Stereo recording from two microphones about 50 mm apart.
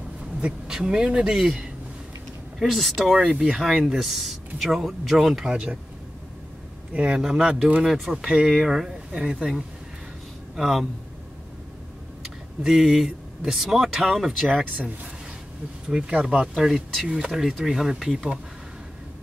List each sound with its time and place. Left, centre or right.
0.4 s speech: centre
1.3 s speech: centre
3.3 s speech: centre
5.5 s speech: right
6.9 s speech: right
7.2 s speech: centre
10.5 s speech: centre
12.2 s speech: centre
15.9 s speech: centre
16.3 s speech: centre